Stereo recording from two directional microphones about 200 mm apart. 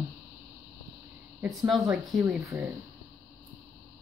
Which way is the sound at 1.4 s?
5° right (ahead or behind).